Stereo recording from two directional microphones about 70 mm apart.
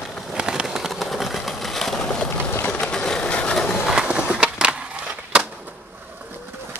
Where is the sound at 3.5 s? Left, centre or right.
Centre.